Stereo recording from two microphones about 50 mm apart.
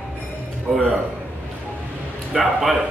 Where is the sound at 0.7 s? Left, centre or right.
Centre.